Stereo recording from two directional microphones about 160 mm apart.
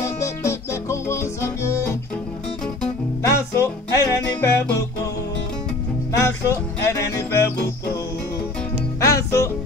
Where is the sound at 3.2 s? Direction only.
20° left (ahead or behind).